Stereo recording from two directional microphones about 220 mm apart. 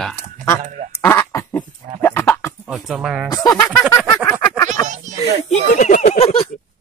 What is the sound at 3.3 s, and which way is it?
Speech, 15° left (ahead or behind).